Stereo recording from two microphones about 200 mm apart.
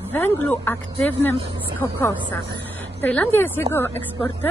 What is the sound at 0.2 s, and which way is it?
Speech, 10° left (ahead or behind).